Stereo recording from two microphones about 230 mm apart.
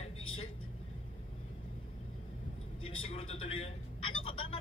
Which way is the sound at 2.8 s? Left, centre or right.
Left.